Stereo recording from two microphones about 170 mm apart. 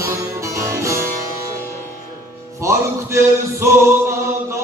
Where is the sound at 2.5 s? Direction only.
15° right (ahead or behind).